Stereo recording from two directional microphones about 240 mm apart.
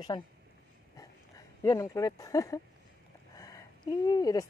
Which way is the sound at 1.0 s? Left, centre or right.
Centre.